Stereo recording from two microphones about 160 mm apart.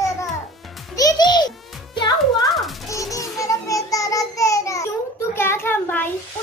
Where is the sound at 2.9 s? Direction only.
20° left (ahead or behind).